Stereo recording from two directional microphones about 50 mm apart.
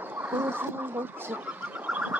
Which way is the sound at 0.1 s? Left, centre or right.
Right.